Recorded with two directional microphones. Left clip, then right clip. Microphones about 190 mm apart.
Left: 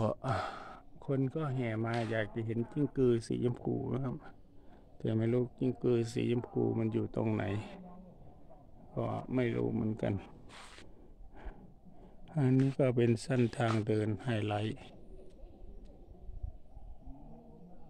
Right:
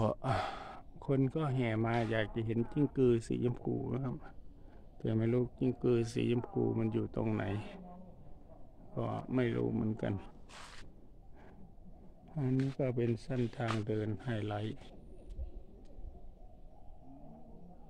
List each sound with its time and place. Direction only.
0.0 s speech: 5° right (ahead or behind)
8.9 s speech: 5° left (ahead or behind)
12.3 s a man's voice: 30° left (ahead or behind)